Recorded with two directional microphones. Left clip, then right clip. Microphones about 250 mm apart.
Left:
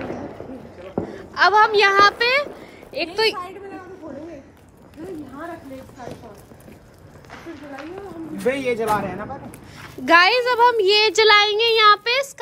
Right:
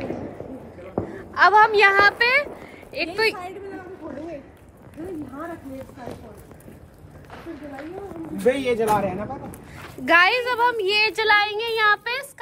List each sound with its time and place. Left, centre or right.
1.1 s a woman's voice: centre
8.5 s a man's voice: centre
10.0 s a child's voice: centre